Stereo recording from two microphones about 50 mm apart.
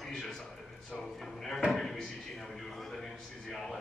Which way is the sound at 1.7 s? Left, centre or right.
Centre.